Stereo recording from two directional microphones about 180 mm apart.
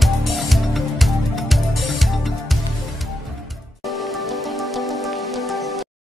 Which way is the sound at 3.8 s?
Centre (ahead or behind).